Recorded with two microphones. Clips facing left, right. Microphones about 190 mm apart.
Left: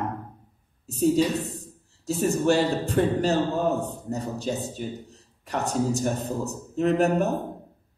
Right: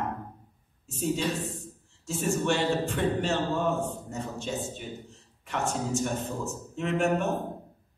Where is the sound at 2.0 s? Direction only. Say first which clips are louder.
Left 5 dB; 35° left (ahead or behind).